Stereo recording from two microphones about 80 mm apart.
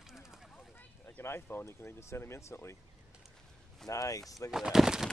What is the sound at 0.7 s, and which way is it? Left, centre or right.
Speech, left.